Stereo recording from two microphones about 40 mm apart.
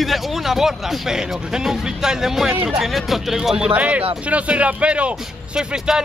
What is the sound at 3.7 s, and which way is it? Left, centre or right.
Speech, right.